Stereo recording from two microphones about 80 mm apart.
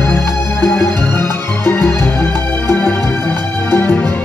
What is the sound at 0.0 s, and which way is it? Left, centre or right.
Music, left.